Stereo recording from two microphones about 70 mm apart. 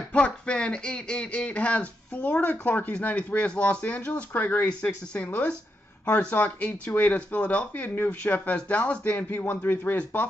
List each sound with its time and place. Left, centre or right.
0.1 s speech: centre
4.3 s speech: left
4.6 s speech: centre